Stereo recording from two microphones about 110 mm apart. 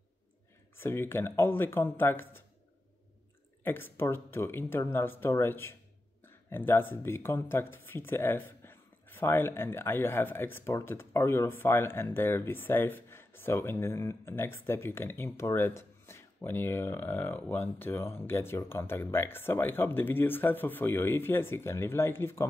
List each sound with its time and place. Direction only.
0.7 s speech: 20° left (ahead or behind)
3.6 s speech: 20° left (ahead or behind)